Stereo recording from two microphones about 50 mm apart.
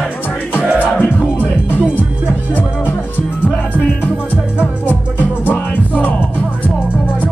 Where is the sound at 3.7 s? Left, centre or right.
Left.